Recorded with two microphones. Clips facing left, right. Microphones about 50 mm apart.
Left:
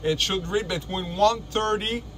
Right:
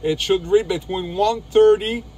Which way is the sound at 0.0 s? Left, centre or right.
Centre.